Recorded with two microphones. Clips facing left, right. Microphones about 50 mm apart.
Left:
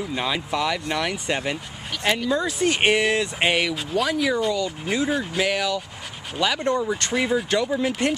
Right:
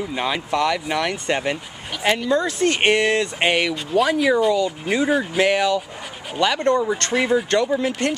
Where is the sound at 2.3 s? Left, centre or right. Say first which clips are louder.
Right 3 dB; centre.